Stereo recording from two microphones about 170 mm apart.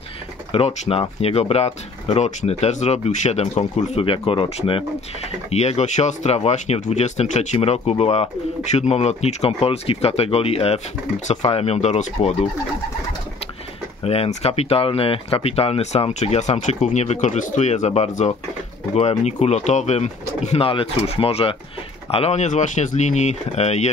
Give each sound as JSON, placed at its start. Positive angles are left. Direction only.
{"t": 0.5, "sound": "speech", "side_deg": 35}
{"t": 14.0, "sound": "speech", "side_deg": 35}